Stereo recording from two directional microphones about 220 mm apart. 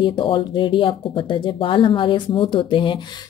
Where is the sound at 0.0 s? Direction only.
20° left (ahead or behind).